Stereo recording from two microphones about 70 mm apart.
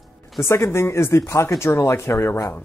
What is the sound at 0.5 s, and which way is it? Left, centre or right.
Speech, left.